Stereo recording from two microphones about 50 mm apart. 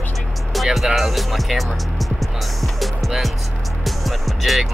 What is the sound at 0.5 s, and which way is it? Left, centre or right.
Speech, centre.